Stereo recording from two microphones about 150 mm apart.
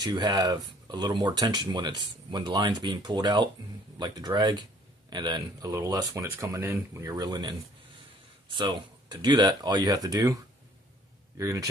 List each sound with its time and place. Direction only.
0.0 s speech: 30° right (ahead or behind)
11.3 s speech: 20° right (ahead or behind)